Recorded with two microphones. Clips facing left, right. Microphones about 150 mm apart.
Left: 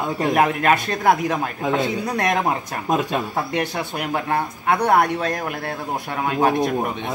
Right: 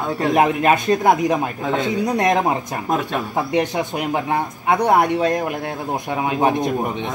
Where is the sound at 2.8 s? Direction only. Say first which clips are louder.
Left 1 dB; 20° left (ahead or behind).